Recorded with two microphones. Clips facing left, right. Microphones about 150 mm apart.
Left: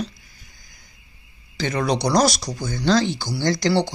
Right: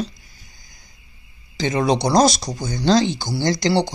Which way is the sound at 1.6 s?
20° right (ahead or behind).